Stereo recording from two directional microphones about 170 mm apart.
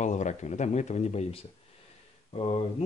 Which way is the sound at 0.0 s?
45° left (ahead or behind).